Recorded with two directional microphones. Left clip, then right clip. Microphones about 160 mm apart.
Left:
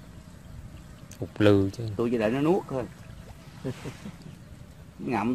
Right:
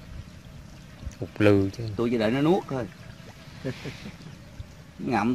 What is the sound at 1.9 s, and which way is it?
Speech, 60° right (ahead or behind).